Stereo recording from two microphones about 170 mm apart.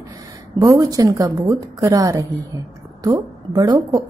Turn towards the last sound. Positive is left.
turn(degrees=-20)  # may be behind; listen again after turning